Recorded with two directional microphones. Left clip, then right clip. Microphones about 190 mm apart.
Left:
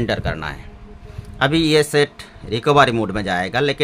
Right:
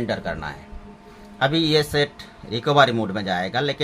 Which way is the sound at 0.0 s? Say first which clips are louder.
Left 4 dB; 55° left (ahead or behind).